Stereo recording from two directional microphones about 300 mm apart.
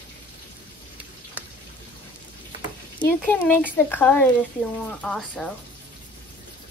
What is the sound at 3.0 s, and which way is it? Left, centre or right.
Speech, centre.